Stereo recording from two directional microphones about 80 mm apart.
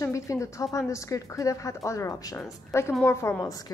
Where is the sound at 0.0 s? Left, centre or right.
Left.